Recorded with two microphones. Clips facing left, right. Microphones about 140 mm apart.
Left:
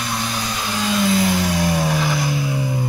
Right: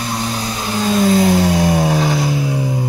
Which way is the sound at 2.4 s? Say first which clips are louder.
Right 3 dB; 20° right (ahead or behind).